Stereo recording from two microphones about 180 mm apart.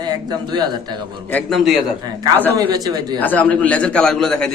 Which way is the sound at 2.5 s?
20° right (ahead or behind).